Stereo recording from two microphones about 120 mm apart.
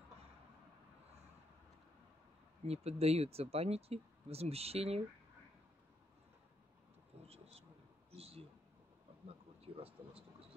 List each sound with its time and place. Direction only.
2.6 s speech: 60° right (ahead or behind)
7.2 s vehicle: 60° right (ahead or behind)
9.8 s speech: 55° right (ahead or behind)